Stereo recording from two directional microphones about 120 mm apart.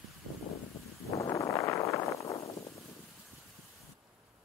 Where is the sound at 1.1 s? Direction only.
25° left (ahead or behind).